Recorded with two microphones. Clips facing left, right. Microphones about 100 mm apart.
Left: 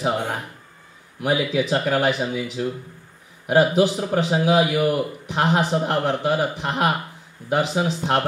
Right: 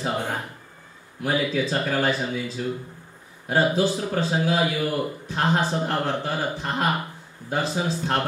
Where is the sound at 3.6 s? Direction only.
15° left (ahead or behind).